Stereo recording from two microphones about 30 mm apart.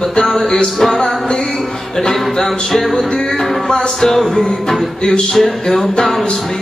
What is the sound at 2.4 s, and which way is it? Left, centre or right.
Music, centre.